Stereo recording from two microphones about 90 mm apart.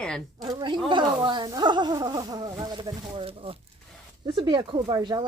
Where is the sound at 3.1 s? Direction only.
90° right.